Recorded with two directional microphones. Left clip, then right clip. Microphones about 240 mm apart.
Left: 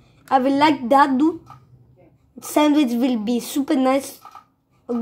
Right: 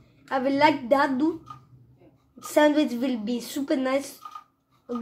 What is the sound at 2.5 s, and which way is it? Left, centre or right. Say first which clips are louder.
A child's voice: left 3 dB; left.